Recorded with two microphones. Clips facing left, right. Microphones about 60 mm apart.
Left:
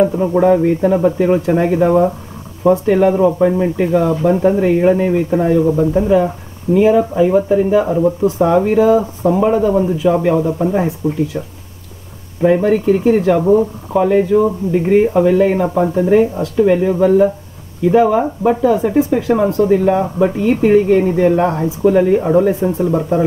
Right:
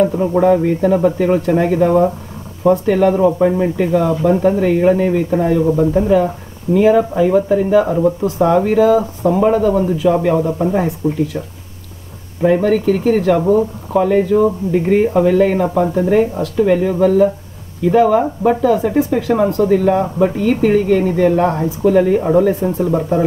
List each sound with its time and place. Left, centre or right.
0.0 s speech: centre
3.7 s speech: centre
9.3 s speech: centre
9.6 s speech: centre
10.1 s speech: centre
12.4 s speech: centre
12.6 s speech: centre
13.4 s speech: centre
20.0 s speech: centre
20.3 s speech: centre
22.5 s speech: left
22.8 s speech: centre